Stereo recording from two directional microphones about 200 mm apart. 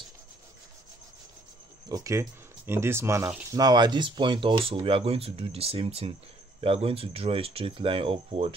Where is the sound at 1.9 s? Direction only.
15° right (ahead or behind).